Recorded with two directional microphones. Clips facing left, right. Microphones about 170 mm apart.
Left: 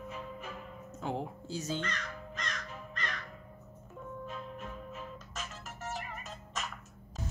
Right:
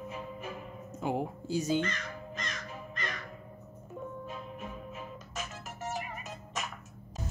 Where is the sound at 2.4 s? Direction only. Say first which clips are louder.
Right 1 dB; 5° right (ahead or behind).